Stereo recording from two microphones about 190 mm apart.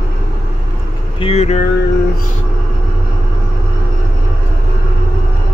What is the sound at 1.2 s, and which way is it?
Vehicle, 35° left (ahead or behind).